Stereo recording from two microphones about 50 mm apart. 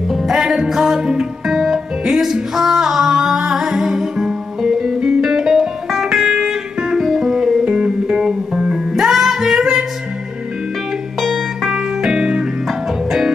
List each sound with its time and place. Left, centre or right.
0.1 s music: centre
7.0 s music: centre
11.1 s music: centre
12.6 s music: centre